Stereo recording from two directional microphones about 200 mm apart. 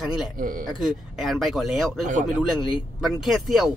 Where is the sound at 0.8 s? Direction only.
Centre (ahead or behind).